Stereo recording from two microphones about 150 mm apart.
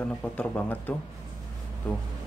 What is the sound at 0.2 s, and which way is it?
Speech, 10° left (ahead or behind).